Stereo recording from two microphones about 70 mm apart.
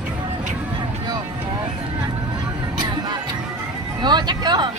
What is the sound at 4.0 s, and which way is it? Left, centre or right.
Music, right.